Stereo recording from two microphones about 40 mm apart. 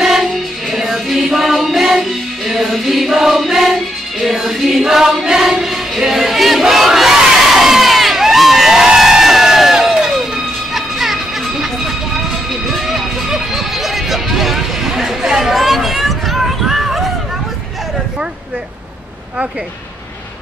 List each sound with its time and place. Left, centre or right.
0.0 s music: centre
8.9 s crowd: centre
10.0 s music: centre
12.6 s music: centre